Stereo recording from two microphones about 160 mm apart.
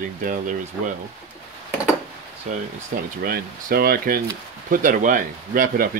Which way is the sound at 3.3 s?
70° right (ahead or behind).